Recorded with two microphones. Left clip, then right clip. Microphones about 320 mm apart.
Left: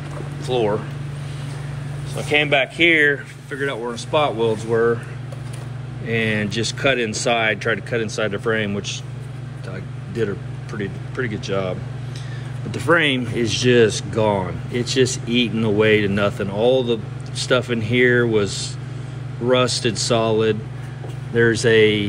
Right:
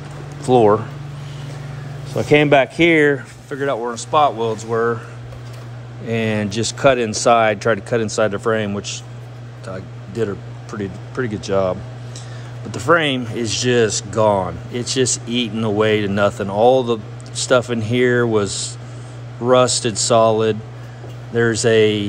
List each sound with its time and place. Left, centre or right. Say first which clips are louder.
0.5 s speech: right 8 dB; right
2.1 s speech: right 5 dB; right
3.7 s speech: right 5 dB; centre
6.0 s speech: even; centre
8.2 s speech: right 3 dB; right
8.6 s speech: right 1 dB; centre
10.1 s a sound: right 1 dB; centre
10.8 s speech: right 2 dB; right
11.4 s speech: right 7 dB; centre
12.7 s speech: right 1 dB; centre
15.9 s speech: left 1 dB; right
16.3 s speech: right 8 dB; centre